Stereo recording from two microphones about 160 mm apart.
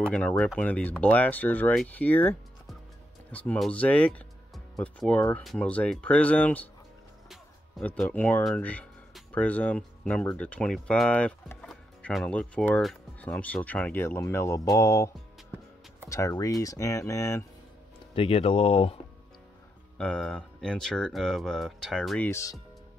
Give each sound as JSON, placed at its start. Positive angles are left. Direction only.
{"t": 0.1, "sound": "speech", "side_deg": 10}
{"t": 16.1, "sound": "speech", "side_deg": 20}
{"t": 18.1, "sound": "speech", "side_deg": 35}
{"t": 20.0, "sound": "speech", "side_deg": 5}
{"t": 22.3, "sound": "speech", "side_deg": 20}